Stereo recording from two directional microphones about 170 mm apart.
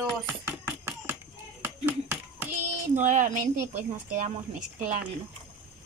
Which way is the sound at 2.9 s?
50° right (ahead or behind).